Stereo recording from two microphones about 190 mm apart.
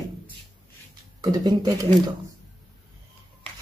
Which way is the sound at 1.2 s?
20° right (ahead or behind).